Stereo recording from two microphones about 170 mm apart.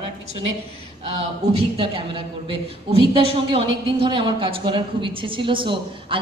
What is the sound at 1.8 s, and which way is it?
A woman's voice, 30° right (ahead or behind).